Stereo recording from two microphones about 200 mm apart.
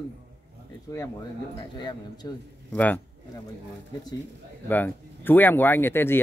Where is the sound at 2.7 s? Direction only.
10° left (ahead or behind).